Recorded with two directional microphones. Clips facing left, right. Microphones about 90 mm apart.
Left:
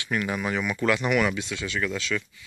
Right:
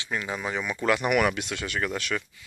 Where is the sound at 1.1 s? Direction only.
55° right (ahead or behind).